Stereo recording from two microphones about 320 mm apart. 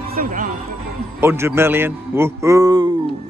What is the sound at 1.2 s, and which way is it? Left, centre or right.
A man's voice, centre.